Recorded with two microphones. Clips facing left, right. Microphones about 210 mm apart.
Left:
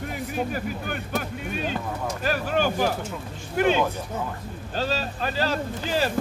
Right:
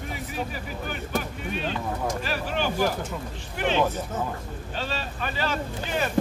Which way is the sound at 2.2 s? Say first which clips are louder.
Left 4 dB; 45° left (ahead or behind).